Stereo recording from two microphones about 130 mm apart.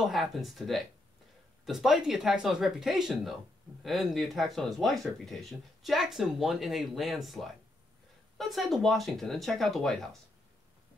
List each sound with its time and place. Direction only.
0.0 s speech: centre (ahead or behind)